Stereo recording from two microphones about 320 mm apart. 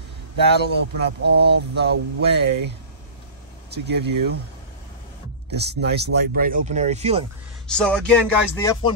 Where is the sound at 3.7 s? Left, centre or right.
Right.